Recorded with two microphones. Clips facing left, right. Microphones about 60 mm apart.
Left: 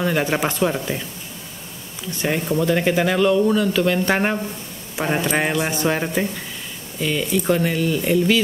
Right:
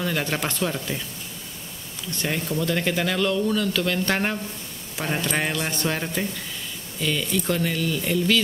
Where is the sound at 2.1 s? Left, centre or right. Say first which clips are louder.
Left 5 dB; centre.